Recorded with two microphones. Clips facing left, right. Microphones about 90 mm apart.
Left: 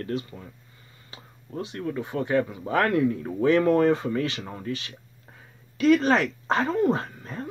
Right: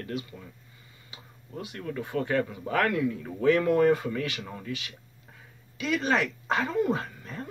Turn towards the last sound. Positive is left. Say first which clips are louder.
# left 3 dB
turn(degrees=35)  # may be behind; listen again after turning